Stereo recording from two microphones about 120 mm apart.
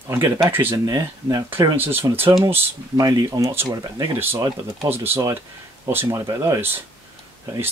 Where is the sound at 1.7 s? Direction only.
20° right (ahead or behind); by 4.9 s 40° right (ahead or behind).